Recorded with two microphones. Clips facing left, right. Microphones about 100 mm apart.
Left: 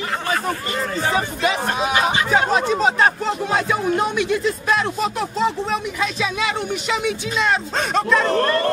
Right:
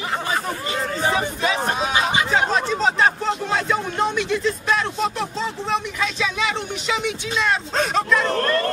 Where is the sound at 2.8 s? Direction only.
10° left (ahead or behind).